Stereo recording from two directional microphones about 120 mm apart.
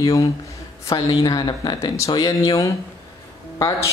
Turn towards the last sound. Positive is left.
turn(degrees=30)  # may be behind; listen again after turning